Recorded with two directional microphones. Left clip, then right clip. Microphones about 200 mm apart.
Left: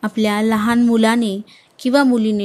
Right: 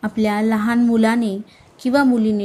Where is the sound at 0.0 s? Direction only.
Centre (ahead or behind).